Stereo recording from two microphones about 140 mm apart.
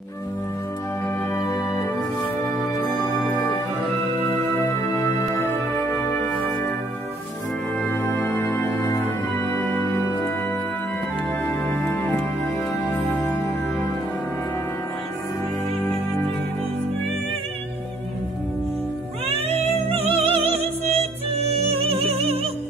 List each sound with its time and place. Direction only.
1.0 s music: 25° left (ahead or behind)
3.3 s music: 15° left (ahead or behind)
7.8 s music: 15° left (ahead or behind)
11.4 s music: 15° left (ahead or behind)
19.2 s music: 45° right (ahead or behind)